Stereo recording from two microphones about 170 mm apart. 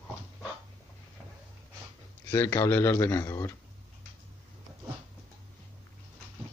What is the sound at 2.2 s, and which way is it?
Speech, 15° left (ahead or behind).